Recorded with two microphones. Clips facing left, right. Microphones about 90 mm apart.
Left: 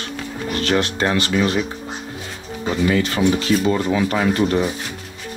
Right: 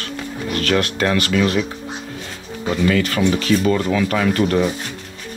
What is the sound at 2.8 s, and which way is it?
Speech, 25° left (ahead or behind).